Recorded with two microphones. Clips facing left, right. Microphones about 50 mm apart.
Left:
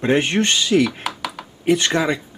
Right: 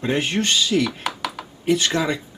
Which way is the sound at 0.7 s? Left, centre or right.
Left.